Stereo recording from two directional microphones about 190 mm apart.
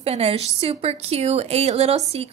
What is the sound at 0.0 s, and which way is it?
A woman's voice, 35° right (ahead or behind).